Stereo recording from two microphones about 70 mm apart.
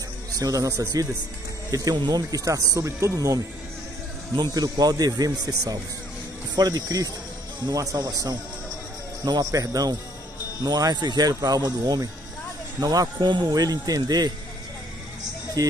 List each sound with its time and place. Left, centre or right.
0.4 s speech: right
4.4 s speech: right
10.6 s speech: right